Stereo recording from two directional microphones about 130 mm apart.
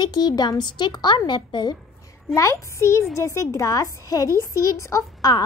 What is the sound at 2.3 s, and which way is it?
Speech, 25° left (ahead or behind).